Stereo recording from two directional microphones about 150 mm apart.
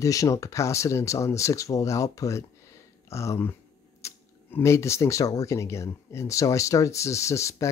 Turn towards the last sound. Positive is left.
turn(degrees=20)  # may be behind; listen again after turning